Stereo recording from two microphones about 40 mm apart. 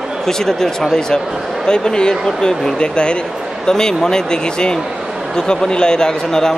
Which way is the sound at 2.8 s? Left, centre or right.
Left.